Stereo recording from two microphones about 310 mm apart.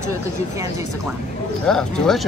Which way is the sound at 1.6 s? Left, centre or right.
Centre.